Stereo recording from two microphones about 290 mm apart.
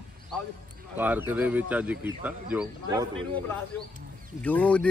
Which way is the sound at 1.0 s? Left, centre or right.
Centre.